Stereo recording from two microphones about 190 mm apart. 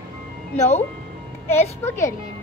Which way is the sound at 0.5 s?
35° left (ahead or behind).